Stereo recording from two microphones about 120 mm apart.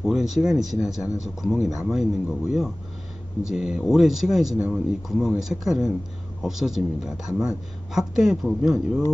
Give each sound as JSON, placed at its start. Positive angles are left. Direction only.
{"t": 0.0, "sound": "speech", "side_deg": 0}
{"t": 0.9, "sound": "a man's voice", "side_deg": 25}
{"t": 1.2, "sound": "speech", "side_deg": 0}